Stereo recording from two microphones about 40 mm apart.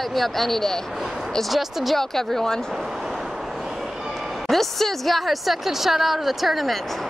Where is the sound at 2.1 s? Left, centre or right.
Centre.